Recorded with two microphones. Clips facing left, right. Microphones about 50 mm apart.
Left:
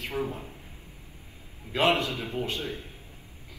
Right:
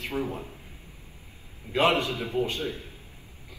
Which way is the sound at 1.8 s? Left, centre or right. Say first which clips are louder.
Right 1 dB; right.